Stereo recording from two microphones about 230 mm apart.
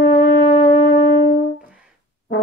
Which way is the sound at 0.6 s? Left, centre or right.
Left.